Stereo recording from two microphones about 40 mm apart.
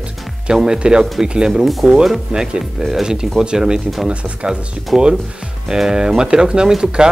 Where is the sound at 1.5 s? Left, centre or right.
Centre.